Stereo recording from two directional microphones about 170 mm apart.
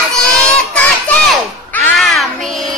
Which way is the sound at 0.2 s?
5° left (ahead or behind).